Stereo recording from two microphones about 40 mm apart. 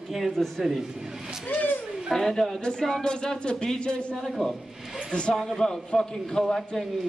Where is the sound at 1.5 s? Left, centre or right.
Left.